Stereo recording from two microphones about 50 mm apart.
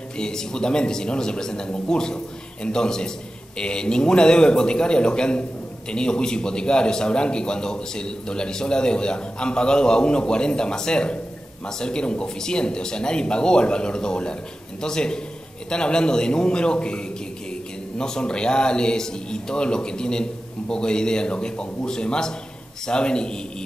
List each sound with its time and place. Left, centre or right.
0.2 s a man's voice: centre